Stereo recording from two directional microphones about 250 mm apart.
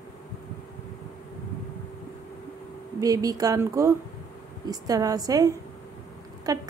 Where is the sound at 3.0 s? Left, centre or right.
Centre.